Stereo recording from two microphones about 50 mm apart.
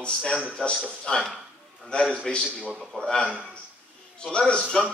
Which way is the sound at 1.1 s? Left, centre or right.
Centre.